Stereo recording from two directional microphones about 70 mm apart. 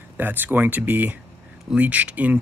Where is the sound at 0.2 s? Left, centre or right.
Right.